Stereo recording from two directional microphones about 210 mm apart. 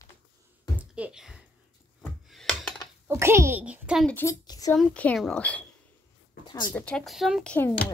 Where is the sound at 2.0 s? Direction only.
Centre (ahead or behind).